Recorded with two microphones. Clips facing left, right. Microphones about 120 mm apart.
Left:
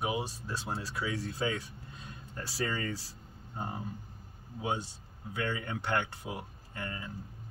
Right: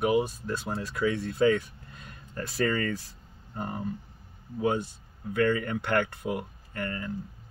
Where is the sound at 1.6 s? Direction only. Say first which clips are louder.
Right 1 dB; 25° left (ahead or behind).